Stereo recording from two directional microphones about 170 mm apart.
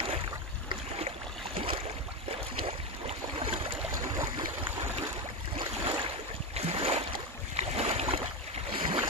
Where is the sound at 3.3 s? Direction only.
35° right (ahead or behind).